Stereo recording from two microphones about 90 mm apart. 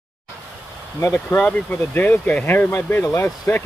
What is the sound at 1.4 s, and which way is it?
Speech, 20° left (ahead or behind).